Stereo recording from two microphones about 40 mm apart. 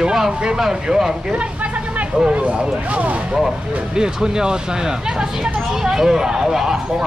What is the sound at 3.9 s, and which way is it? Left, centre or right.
Speech, centre.